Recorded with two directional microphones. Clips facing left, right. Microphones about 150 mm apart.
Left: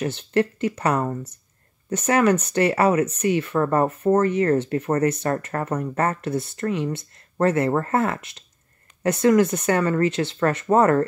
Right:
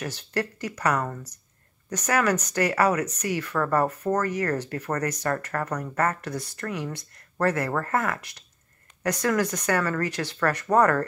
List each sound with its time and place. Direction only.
0.0 s speech: 25° left (ahead or behind)